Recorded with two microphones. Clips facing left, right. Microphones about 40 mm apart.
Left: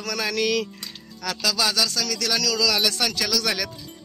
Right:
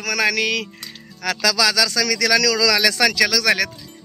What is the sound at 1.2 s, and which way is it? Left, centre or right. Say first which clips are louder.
Speech: right 5 dB; right.